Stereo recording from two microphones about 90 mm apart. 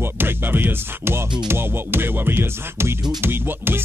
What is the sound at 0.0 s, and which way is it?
Music, 25° right (ahead or behind).